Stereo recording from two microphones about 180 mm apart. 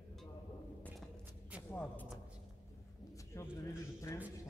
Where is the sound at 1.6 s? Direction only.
10° left (ahead or behind).